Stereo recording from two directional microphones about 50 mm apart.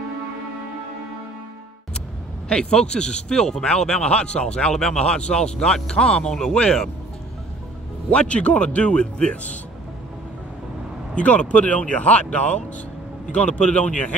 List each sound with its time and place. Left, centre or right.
2.6 s speech: centre
8.1 s speech: left
11.1 s speech: left